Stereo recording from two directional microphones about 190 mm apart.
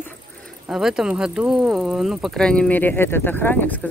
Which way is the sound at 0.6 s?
5° right (ahead or behind).